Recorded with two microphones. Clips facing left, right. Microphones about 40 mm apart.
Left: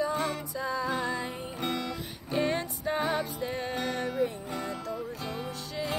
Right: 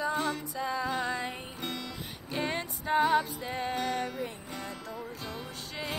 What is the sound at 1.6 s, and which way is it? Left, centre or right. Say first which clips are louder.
Music: left 7 dB; left.